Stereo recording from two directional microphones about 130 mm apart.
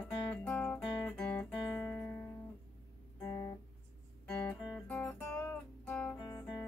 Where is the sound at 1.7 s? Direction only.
25° left (ahead or behind).